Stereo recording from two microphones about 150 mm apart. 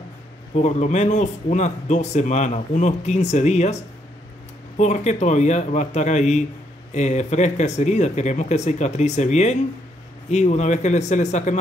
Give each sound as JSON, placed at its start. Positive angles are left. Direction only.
{"t": 0.6, "sound": "speech", "side_deg": 50}